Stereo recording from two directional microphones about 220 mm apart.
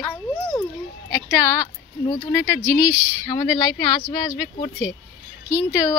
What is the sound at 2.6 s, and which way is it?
Speech, 5° right (ahead or behind).